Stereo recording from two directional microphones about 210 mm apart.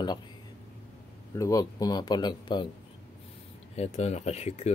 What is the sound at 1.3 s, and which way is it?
Speech, 15° left (ahead or behind).